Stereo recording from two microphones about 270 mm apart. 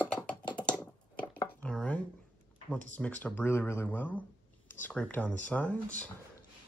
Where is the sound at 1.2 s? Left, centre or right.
Centre.